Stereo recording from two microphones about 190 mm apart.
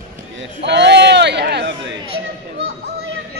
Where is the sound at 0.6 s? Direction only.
65° right (ahead or behind).